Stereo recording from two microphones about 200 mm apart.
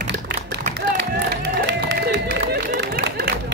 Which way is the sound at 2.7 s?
55° right (ahead or behind).